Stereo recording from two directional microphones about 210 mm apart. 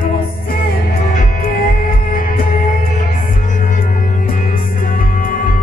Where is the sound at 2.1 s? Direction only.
40° left (ahead or behind).